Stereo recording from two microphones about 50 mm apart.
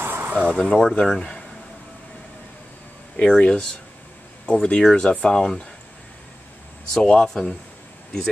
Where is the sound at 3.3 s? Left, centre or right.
Centre.